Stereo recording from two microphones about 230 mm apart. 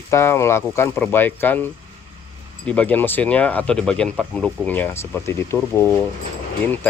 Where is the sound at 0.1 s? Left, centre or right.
Centre.